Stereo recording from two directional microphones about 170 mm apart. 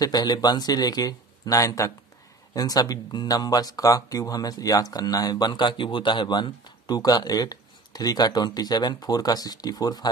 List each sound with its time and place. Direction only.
0.0 s speech: 25° left (ahead or behind)